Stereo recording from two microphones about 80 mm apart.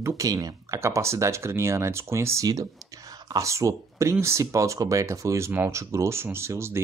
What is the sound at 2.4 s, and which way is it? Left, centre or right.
Speech, right.